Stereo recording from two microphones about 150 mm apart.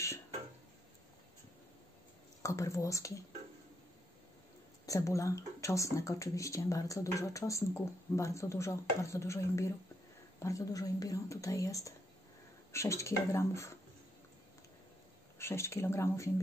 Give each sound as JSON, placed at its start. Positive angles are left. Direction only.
{"t": 2.4, "sound": "speech", "side_deg": 20}
{"t": 4.8, "sound": "speech", "side_deg": 20}
{"t": 15.3, "sound": "speech", "side_deg": 15}